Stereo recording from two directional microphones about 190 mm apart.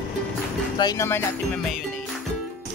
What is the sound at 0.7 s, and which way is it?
Speech, 20° left (ahead or behind).